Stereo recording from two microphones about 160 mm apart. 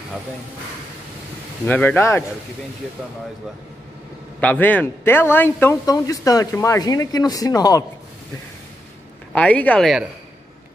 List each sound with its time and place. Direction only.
1.7 s speech: 10° left (ahead or behind)
4.4 s a man's voice: 10° left (ahead or behind)
9.3 s speech: 10° left (ahead or behind)